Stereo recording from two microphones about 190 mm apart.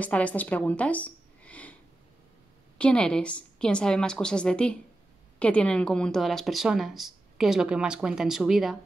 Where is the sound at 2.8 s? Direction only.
5° left (ahead or behind).